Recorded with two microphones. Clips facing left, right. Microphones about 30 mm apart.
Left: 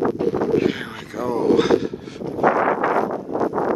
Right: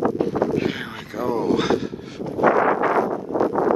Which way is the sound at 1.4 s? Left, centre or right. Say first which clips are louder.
Left 7 dB; centre.